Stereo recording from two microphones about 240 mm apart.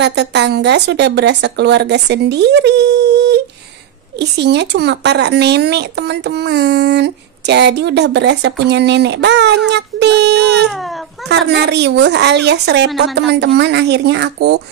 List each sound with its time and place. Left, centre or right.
0.0 s speech: right
10.7 s speech: centre
11.2 s speech: right